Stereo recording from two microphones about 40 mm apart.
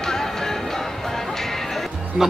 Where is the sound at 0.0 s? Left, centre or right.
Centre.